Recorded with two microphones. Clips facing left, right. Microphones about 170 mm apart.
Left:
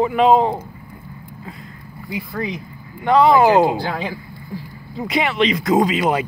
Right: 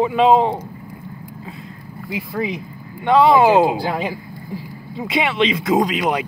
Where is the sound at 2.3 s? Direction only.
5° right (ahead or behind).